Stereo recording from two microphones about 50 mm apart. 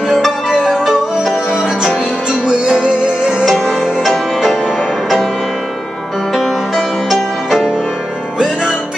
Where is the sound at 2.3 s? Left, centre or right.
Centre.